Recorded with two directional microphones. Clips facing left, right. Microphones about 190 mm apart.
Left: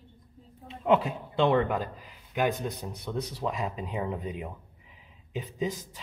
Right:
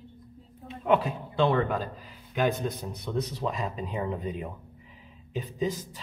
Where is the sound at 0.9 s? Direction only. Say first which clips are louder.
Even; 20° left (ahead or behind).